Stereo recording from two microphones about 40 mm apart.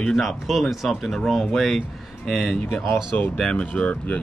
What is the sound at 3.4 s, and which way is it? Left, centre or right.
Speech, left.